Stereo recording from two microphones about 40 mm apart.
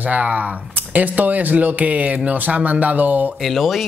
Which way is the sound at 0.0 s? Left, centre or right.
Right.